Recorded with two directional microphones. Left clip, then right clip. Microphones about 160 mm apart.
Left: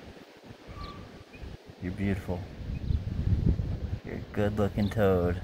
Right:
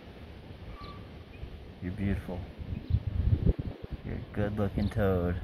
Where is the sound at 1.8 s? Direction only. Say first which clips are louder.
Left 3 dB; 10° left (ahead or behind).